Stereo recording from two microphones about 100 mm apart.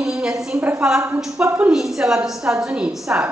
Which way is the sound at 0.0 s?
5° right (ahead or behind).